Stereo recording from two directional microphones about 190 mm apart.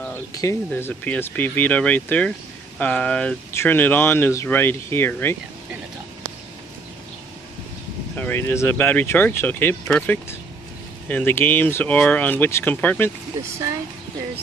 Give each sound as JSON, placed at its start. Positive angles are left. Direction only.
{"t": 0.0, "sound": "speech", "side_deg": 15}
{"t": 8.2, "sound": "speech", "side_deg": 10}